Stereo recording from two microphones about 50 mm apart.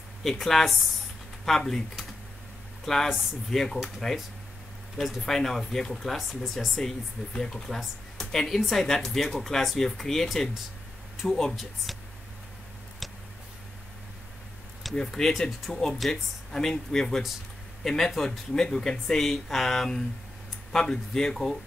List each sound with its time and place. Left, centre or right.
0.2 s speech: centre
7.3 s speech: centre
8.2 s a sound: centre
8.5 s speech: centre
11.5 s speech: centre
13.0 s a sound: centre
15.0 s speech: centre